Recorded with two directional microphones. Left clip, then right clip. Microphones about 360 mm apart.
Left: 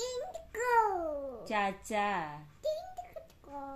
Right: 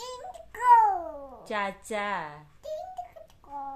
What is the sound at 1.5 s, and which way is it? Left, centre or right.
Speech, centre.